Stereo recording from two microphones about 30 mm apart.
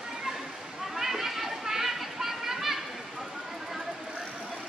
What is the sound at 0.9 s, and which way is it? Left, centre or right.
Children playing, centre.